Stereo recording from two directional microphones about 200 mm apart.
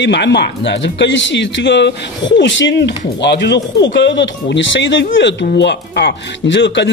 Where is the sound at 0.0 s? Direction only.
60° left (ahead or behind).